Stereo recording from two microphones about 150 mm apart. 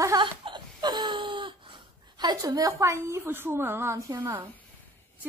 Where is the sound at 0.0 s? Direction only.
30° right (ahead or behind).